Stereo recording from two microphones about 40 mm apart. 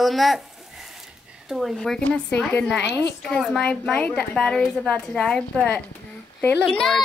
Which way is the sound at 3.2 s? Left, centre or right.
Centre.